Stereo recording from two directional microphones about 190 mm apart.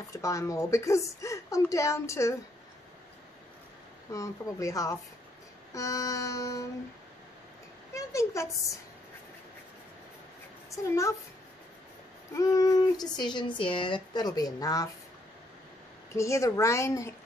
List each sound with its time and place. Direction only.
0.1 s a woman's voice: 15° left (ahead or behind)
4.1 s a woman's voice: 15° left (ahead or behind)
7.9 s a woman's voice: 15° left (ahead or behind)
10.7 s a woman's voice: 15° left (ahead or behind)
12.4 s speech: 20° left (ahead or behind)
16.1 s a woman's voice: 15° left (ahead or behind)